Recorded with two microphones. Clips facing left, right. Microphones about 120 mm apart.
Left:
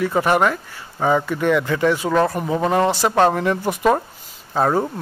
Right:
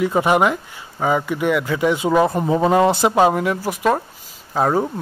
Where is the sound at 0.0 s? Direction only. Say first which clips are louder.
Right 1 dB; 15° right (ahead or behind).